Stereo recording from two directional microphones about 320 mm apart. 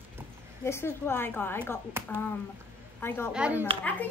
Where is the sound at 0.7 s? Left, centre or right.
Centre.